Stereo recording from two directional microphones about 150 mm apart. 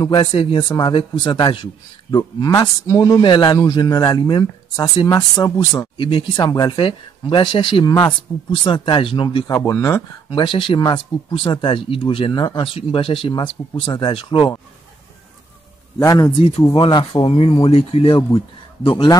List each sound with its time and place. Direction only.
0.0 s speech: 30° left (ahead or behind)
9.5 s speech: 20° left (ahead or behind)
10.3 s speech: 30° left (ahead or behind)
16.0 s speech: 25° left (ahead or behind)
16.7 s speech: 35° left (ahead or behind)